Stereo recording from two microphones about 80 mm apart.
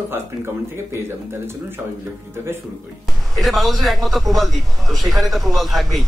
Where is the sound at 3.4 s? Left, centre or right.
Centre.